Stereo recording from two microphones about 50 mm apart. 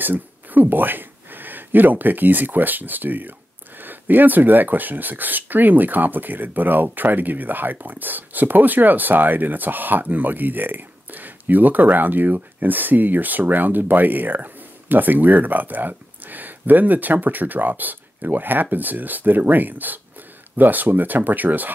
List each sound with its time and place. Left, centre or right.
0.0 s speech: right